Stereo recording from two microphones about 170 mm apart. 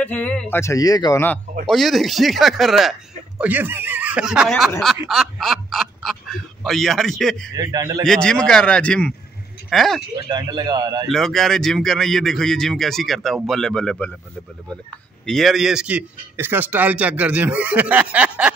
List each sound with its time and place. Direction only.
0.0 s speech: 10° left (ahead or behind)
1.7 s speech: centre (ahead or behind)
7.5 s a man's voice: 20° right (ahead or behind)
8.0 s a man's voice: 5° left (ahead or behind)
10.2 s a man's voice: 25° right (ahead or behind)
11.1 s a man's voice: centre (ahead or behind)
15.2 s a man's voice: centre (ahead or behind)